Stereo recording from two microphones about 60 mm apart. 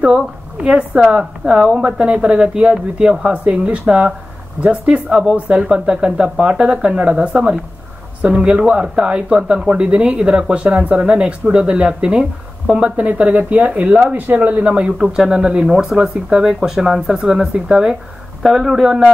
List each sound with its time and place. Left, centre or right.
0.0 s a woman's voice: centre
3.4 s speech: right
9.4 s speech: centre
9.7 s speech: centre
15.0 s speech: centre